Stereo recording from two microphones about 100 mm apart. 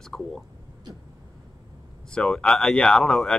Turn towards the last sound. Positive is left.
turn(degrees=5)  # may be behind; listen again after turning